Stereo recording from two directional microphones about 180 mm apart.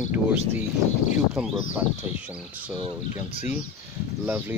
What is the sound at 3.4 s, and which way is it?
Speech, 40° left (ahead or behind).